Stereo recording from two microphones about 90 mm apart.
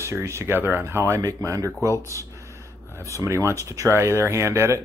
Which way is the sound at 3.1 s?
35° right (ahead or behind).